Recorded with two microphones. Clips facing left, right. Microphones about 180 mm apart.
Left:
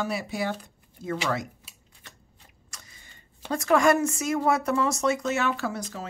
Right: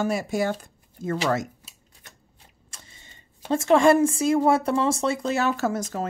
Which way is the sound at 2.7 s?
25° right (ahead or behind).